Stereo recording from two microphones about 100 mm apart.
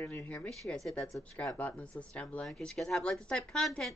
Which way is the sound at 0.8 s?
5° left (ahead or behind).